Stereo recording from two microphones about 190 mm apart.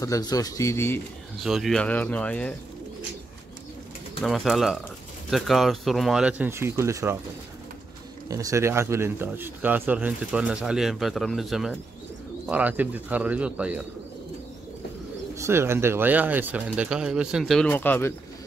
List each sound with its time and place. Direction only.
0.0 s speech: 20° left (ahead or behind)
1.4 s speech: centre (ahead or behind)
4.2 s speech: centre (ahead or behind); by 7.2 s 15° right (ahead or behind)
8.3 s speech: 15° right (ahead or behind)
15.3 s speech: 15° right (ahead or behind)
17.6 s speech: 10° left (ahead or behind)